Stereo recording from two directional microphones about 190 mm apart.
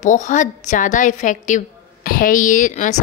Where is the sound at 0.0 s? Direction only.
40° left (ahead or behind).